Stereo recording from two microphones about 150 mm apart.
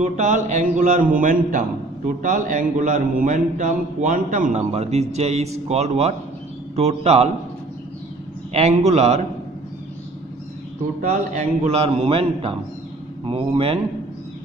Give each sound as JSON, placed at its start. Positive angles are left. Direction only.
{"t": 0.0, "sound": "a man's voice", "side_deg": -50}
{"t": 8.5, "sound": "a man's voice", "side_deg": -45}
{"t": 11.0, "sound": "a man's voice", "side_deg": -55}